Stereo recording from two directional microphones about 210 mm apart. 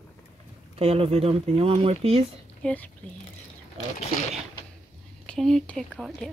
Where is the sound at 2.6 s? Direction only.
5° left (ahead or behind).